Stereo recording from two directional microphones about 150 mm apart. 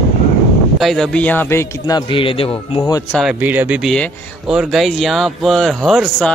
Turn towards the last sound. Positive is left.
turn(degrees=5)  # may be behind; listen again after turning